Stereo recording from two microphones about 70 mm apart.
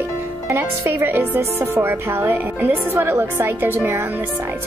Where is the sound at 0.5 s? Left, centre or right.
Right.